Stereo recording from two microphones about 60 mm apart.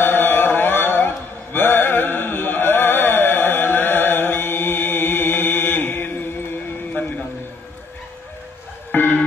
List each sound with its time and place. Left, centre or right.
0.0 s chant: left
6.9 s a sound: left
8.9 s music: left